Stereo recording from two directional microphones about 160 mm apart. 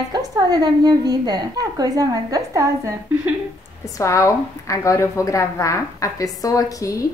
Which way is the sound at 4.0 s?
20° left (ahead or behind).